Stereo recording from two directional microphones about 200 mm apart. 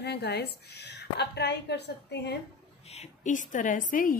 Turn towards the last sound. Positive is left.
turn(degrees=45)  # may be behind; listen again after turning